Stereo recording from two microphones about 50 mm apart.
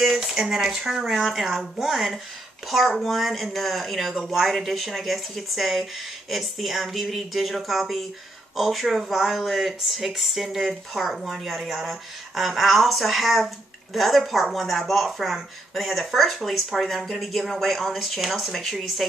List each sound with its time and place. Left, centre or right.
0.0 s speech: centre